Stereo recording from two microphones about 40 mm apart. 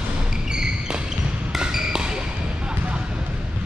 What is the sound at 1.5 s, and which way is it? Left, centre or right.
Basketball bounce, centre.